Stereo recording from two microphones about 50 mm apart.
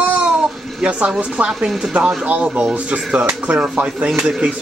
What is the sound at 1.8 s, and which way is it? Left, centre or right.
Speech, right.